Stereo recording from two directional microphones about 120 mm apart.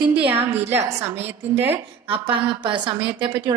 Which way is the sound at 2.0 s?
45° right (ahead or behind).